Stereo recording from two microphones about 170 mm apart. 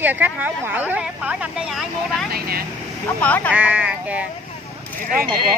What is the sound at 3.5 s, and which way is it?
Speech, 5° right (ahead or behind).